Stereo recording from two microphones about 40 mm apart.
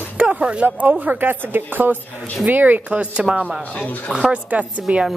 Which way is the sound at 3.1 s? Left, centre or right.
Right.